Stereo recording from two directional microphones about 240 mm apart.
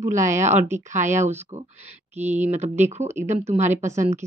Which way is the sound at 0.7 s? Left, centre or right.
Right.